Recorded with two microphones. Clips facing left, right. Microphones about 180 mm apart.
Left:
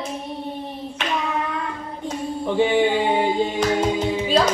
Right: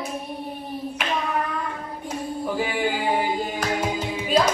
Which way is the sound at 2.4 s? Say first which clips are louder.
Left 8 dB; 25° left (ahead or behind).